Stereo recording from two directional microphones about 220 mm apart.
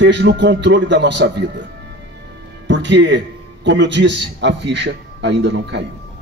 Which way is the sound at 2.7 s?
55° right (ahead or behind).